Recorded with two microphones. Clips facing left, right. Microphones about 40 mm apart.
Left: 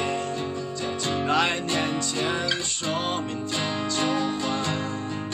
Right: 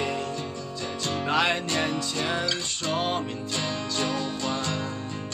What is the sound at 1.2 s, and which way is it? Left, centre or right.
Music, centre.